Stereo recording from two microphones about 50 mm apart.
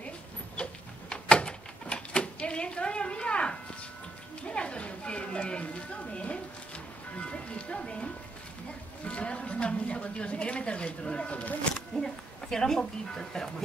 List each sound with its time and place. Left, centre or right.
0.6 s a sound: left
4.5 s a woman's voice: left
11.9 s speech: centre